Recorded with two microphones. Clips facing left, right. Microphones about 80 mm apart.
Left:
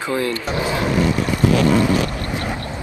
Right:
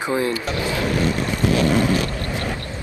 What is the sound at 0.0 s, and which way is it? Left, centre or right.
Speech, right.